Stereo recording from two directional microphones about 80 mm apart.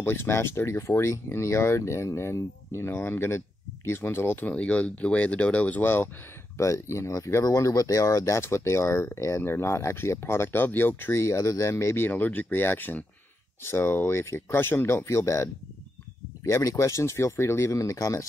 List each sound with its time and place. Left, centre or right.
0.0 s speech: left
4.5 s speech: centre
6.6 s speech: left
12.1 s speech: left
15.0 s speech: left